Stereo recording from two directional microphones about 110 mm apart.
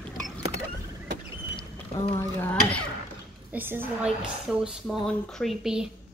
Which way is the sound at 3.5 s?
20° right (ahead or behind).